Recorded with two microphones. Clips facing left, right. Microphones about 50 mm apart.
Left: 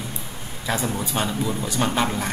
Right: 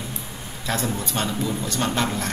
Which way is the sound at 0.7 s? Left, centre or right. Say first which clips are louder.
Left 1 dB; centre.